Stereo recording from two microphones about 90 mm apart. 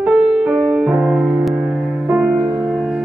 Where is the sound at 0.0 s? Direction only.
5° right (ahead or behind).